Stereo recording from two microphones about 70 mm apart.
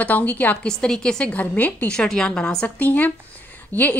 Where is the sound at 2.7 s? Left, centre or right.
Left.